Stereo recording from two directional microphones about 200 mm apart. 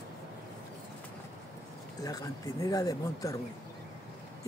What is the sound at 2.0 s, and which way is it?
Speech, 20° left (ahead or behind).